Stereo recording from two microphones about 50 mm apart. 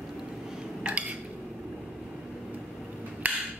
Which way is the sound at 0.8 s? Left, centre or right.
Right.